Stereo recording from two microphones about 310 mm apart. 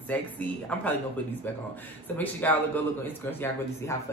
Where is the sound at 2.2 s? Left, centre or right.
Centre.